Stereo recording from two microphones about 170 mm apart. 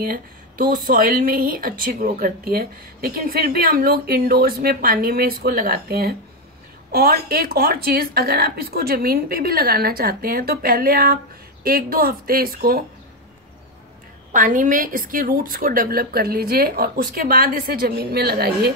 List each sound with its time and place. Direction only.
0.0 s speech: 55° right (ahead or behind)
14.3 s speech: 50° right (ahead or behind); by 18.7 s 70° right (ahead or behind)